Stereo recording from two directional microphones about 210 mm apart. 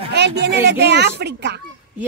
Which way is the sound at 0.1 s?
55° right (ahead or behind).